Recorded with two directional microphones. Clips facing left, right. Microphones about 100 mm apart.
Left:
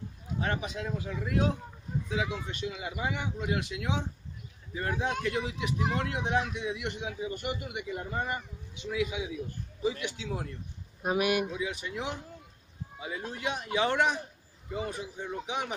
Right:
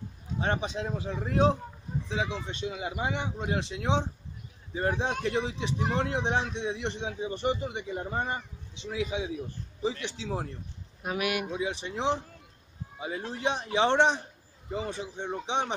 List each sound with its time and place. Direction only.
0.4 s a man's voice: 30° right (ahead or behind)
11.0 s speech: 25° left (ahead or behind)
11.5 s a man's voice: 30° right (ahead or behind)